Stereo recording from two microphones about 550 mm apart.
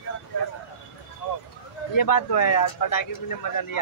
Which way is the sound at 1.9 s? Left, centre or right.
Left.